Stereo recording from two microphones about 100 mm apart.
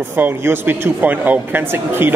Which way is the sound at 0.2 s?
20° right (ahead or behind).